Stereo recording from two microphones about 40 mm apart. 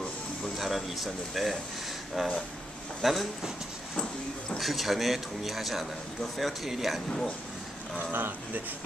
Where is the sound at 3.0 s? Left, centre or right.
Centre.